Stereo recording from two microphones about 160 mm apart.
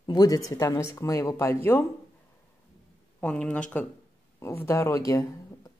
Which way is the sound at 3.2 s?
5° left (ahead or behind).